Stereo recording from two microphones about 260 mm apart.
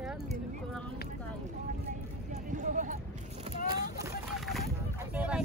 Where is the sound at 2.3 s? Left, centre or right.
Right.